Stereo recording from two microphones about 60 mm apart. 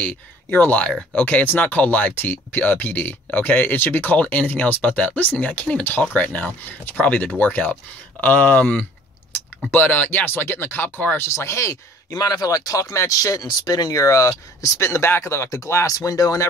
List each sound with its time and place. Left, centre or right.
0.0 s speech: left
11.2 s speech: left
14.8 s speech: left